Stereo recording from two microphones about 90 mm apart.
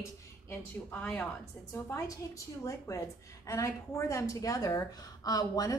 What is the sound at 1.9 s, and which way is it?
A woman's voice, 35° left (ahead or behind).